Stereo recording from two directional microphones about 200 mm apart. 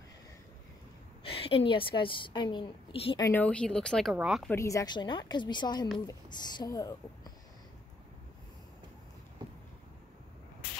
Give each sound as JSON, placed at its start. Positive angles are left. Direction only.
{"t": 1.2, "sound": "a sound", "side_deg": 30}
{"t": 1.7, "sound": "a woman's voice", "side_deg": 25}
{"t": 3.3, "sound": "speech", "side_deg": 5}
{"t": 4.6, "sound": "a woman's voice", "side_deg": 15}